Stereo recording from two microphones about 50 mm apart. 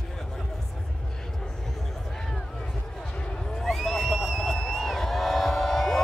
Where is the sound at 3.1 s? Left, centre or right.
Centre.